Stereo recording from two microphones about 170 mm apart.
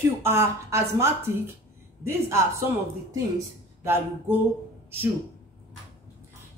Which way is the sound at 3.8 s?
15° right (ahead or behind).